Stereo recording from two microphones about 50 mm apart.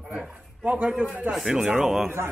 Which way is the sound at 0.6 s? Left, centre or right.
Right.